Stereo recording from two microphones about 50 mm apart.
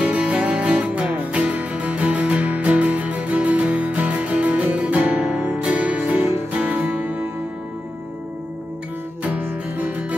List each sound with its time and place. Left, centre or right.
0.0 s music: right
5.9 s music: right
6.5 s music: right
9.4 s music: right